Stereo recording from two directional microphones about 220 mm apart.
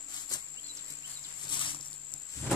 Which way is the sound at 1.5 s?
20° left (ahead or behind).